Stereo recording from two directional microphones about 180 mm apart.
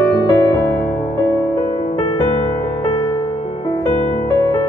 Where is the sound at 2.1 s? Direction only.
25° left (ahead or behind).